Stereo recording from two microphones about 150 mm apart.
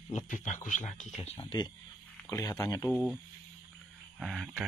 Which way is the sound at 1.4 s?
35° left (ahead or behind).